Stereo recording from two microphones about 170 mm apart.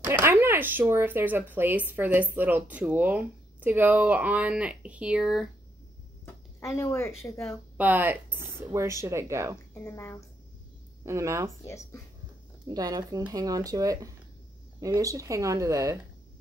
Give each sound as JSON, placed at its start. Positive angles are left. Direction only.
{"t": 0.0, "sound": "speech", "side_deg": -15}
{"t": 6.6, "sound": "speech", "side_deg": 15}
{"t": 7.7, "sound": "speech", "side_deg": -10}
{"t": 9.8, "sound": "speech", "side_deg": 15}
{"t": 11.1, "sound": "speech", "side_deg": -15}
{"t": 11.6, "sound": "speech", "side_deg": 15}
{"t": 12.6, "sound": "speech", "side_deg": -20}